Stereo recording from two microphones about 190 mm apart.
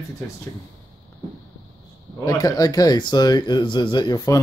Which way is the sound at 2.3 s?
20° left (ahead or behind).